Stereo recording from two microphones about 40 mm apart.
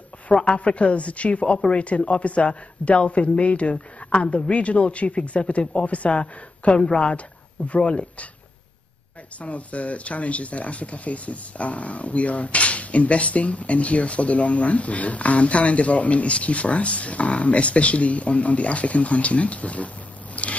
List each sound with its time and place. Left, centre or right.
0.3 s speech: left
9.4 s speech: left
20.4 s biting: left